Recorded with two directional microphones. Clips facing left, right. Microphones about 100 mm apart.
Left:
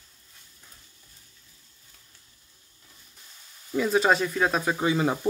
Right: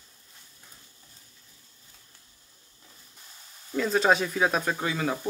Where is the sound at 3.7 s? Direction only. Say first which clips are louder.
Left 1 dB; 5° left (ahead or behind).